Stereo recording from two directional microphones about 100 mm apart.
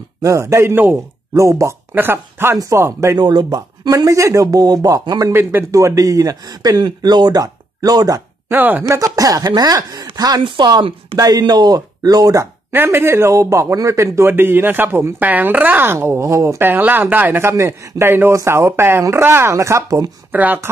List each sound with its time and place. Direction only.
0.2 s a man's voice: 30° right (ahead or behind)
2.5 s a man's voice: 35° right (ahead or behind)
3.2 s speech: 45° right (ahead or behind)
5.3 s speech: 25° right (ahead or behind); by 8.2 s 40° right (ahead or behind)
8.5 s a man's voice: 20° right (ahead or behind)
8.8 s speech: 30° right (ahead or behind)
12.7 s a man's voice: 25° right (ahead or behind)
20.2 s speech: 20° right (ahead or behind)